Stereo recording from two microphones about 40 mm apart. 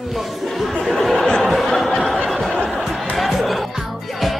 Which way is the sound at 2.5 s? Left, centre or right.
Left.